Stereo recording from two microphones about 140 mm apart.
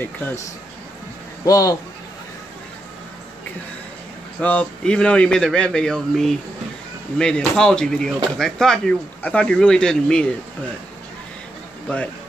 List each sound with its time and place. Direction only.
0.0 s a man's voice: 15° left (ahead or behind)
1.4 s speech: 25° left (ahead or behind)
4.4 s a man's voice: 10° left (ahead or behind)